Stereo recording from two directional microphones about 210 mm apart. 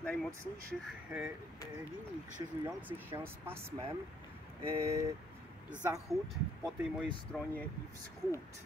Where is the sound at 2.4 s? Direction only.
20° right (ahead or behind).